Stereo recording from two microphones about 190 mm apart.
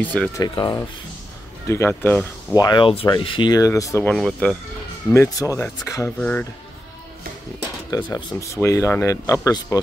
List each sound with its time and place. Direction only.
0.0 s speech: 10° left (ahead or behind)
0.4 s speech: 20° left (ahead or behind)
2.5 s speech: 20° left (ahead or behind)
4.1 s speech: centre (ahead or behind)
5.1 s speech: 15° left (ahead or behind)
7.9 s speech: 20° left (ahead or behind)